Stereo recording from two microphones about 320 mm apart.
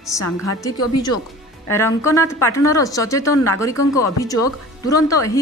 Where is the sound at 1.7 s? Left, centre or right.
Centre.